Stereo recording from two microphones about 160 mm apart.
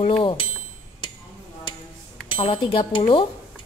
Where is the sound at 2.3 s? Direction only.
35° left (ahead or behind).